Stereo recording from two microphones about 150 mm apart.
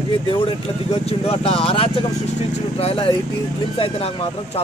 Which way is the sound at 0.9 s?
40° left (ahead or behind).